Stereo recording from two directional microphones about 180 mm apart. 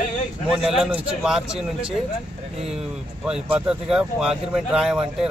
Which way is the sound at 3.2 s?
5° right (ahead or behind).